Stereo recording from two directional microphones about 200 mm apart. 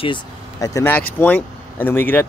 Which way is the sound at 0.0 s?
20° left (ahead or behind).